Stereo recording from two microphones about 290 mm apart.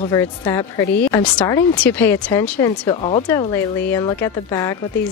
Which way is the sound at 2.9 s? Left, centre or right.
Centre.